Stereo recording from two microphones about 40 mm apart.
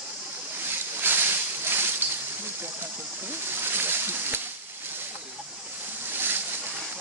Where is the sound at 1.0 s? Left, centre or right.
Right.